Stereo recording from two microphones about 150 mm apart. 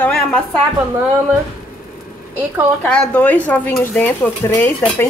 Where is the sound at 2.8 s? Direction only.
10° left (ahead or behind).